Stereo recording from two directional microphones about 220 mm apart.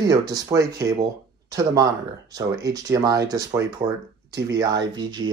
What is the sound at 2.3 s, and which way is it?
Speech, 15° right (ahead or behind).